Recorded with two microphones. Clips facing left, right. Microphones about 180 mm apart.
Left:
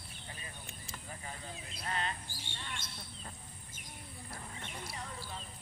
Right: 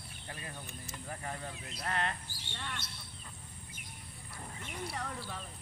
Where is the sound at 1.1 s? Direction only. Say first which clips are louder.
Right 5 dB; 60° right (ahead or behind).